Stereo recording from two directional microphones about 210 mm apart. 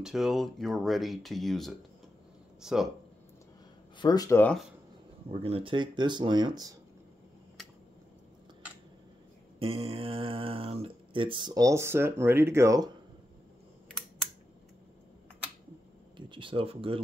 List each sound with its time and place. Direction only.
0.0 s speech: centre (ahead or behind)
4.0 s speech: 20° left (ahead or behind)
5.3 s speech: 25° right (ahead or behind)
9.6 s speech: 25° right (ahead or behind)
16.2 s speech: 25° right (ahead or behind)